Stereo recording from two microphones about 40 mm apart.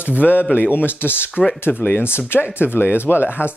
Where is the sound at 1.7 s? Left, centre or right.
Left.